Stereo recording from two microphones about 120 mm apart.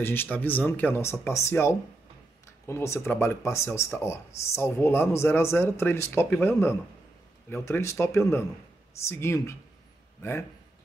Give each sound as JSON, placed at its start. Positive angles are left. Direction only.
{"t": 0.0, "sound": "speech", "side_deg": 15}